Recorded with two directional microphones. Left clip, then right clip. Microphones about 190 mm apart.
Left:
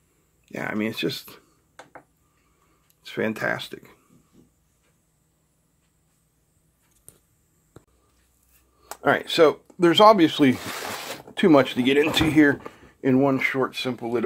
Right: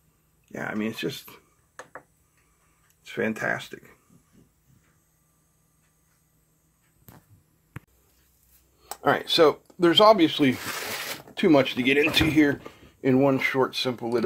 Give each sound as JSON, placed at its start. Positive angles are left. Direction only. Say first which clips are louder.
{"t": 0.5, "sound": "speech", "louder": "left 3 dB", "side_deg": 20}
{"t": 3.1, "sound": "speech", "louder": "left 1 dB", "side_deg": 15}
{"t": 8.8, "sound": "speech", "louder": "left 2 dB", "side_deg": 10}
{"t": 13.1, "sound": "speech", "louder": "left 1 dB", "side_deg": 0}